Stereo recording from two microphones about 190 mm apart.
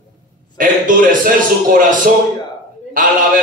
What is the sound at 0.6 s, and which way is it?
Speech, 45° right (ahead or behind).